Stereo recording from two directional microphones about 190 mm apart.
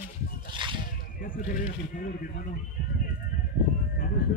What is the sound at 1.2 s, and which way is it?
Speech, 45° left (ahead or behind).